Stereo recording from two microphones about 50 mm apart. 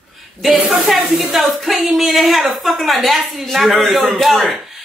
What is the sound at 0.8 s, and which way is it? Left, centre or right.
A woman's voice, centre.